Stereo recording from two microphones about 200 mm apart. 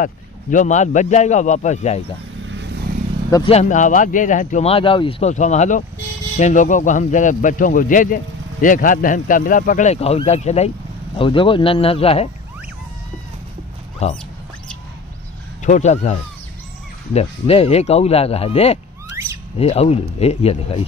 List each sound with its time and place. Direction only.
0.0 s speech: 40° left (ahead or behind)
3.4 s speech: 35° left (ahead or behind)
14.0 s speech: 35° left (ahead or behind)
15.6 s speech: 35° left (ahead or behind)